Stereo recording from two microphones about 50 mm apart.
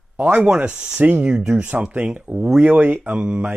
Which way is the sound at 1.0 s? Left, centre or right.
Right.